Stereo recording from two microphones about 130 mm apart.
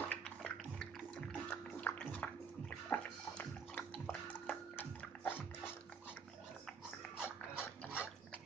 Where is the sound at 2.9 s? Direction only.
10° left (ahead or behind).